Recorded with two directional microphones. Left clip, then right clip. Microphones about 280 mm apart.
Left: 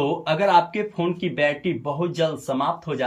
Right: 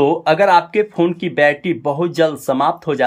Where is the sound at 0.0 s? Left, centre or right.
Centre.